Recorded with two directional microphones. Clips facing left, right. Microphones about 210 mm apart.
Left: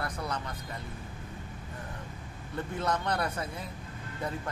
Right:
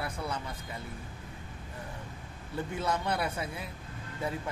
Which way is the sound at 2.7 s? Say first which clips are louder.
Left 1 dB; 10° right (ahead or behind).